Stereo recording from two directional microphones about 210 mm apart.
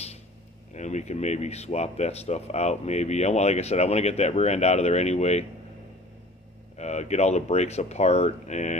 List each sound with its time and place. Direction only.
0.7 s speech: 35° left (ahead or behind)
6.8 s speech: 30° left (ahead or behind)